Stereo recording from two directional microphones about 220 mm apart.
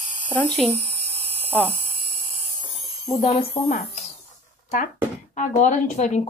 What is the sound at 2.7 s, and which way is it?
Alarm, 30° left (ahead or behind).